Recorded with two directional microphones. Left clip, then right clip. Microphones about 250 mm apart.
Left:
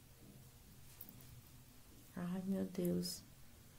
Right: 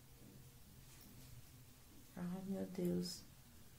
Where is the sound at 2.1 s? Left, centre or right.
Left.